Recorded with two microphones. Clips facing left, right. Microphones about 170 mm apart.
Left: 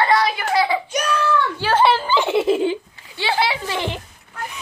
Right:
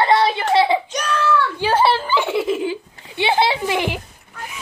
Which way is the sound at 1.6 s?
10° right (ahead or behind).